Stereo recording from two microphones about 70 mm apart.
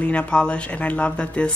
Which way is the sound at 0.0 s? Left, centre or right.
Centre.